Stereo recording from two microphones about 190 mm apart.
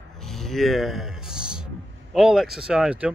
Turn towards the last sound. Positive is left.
turn(degrees=-5)  # may be behind; listen again after turning